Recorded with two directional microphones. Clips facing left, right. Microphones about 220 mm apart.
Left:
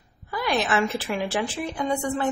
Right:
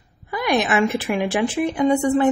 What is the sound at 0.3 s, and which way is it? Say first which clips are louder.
A woman's voice: right 4 dB; 15° right (ahead or behind).